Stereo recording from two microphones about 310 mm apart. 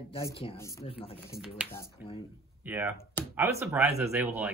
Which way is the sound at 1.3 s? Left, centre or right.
Centre.